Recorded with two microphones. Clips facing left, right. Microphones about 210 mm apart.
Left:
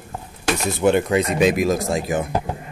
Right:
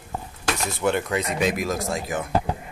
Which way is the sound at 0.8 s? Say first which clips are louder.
Left 7 dB; 20° left (ahead or behind).